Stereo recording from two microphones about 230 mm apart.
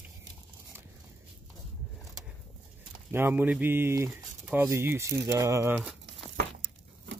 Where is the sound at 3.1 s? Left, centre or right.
Centre.